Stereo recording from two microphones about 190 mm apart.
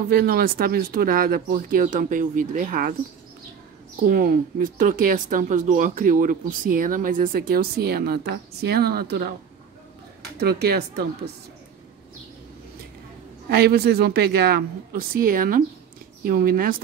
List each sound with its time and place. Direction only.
0.1 s speech: 50° right (ahead or behind)
4.1 s speech: 45° right (ahead or behind)
10.4 s a woman's voice: 55° right (ahead or behind)
13.5 s a woman's voice: 55° right (ahead or behind)